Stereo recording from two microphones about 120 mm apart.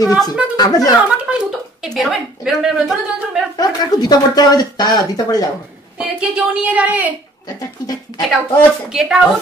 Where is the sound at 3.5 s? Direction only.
30° left (ahead or behind).